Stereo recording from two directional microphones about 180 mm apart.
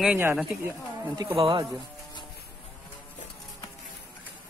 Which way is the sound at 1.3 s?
30° right (ahead or behind).